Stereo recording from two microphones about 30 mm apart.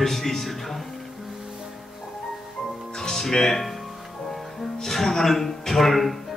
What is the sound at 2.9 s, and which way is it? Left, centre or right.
Music, centre.